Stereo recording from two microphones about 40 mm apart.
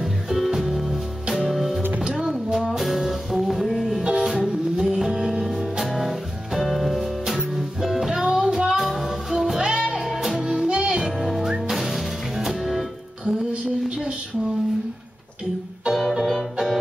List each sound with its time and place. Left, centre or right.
0.0 s music: centre
8.7 s music: centre
10.0 s music: centre
10.4 s music: centre
11.0 s music: centre
13.2 s female singing: right
15.9 s music: centre